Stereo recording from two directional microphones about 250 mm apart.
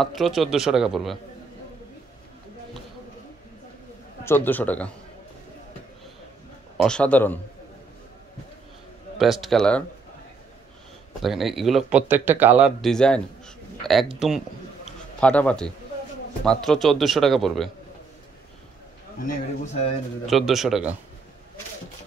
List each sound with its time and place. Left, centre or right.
0.0 s speech: centre
4.2 s a man's voice: centre
6.8 s speech: centre
9.2 s speech: centre
11.2 s speech: centre
15.1 s speech: centre
19.1 s a man's voice: left
20.2 s speech: centre